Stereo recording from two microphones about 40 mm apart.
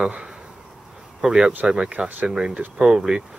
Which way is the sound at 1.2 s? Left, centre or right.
Centre.